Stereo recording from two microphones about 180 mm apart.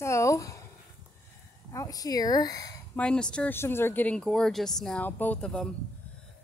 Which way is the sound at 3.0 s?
5° left (ahead or behind).